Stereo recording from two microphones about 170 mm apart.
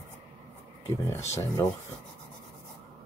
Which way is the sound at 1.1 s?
15° left (ahead or behind).